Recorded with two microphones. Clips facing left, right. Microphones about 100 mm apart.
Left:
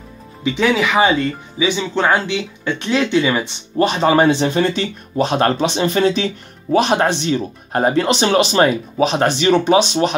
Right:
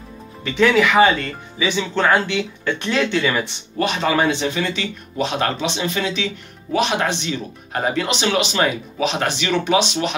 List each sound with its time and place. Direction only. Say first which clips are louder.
0.4 s speech: right 1 dB; 15° left (ahead or behind)
3.7 s speech: left 5 dB; 35° left (ahead or behind)